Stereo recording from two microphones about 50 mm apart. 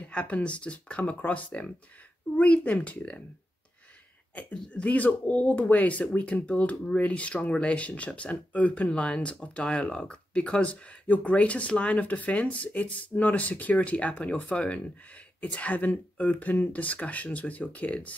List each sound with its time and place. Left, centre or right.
0.1 s speech: left
4.7 s speech: left